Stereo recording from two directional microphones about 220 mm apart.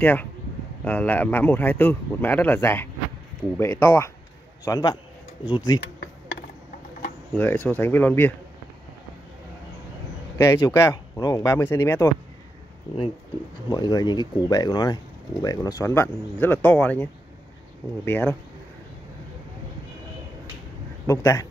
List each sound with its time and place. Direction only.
0.0 s speech: 5° left (ahead or behind)
7.3 s speech: 10° left (ahead or behind)
10.3 s speech: 15° left (ahead or behind)
13.7 s speech: 20° left (ahead or behind)
21.1 s speech: 15° left (ahead or behind)